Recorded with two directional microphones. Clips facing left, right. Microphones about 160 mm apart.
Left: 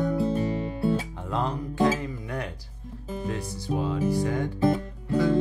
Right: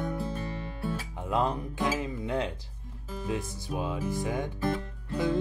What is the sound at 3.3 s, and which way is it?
Music, 15° right (ahead or behind).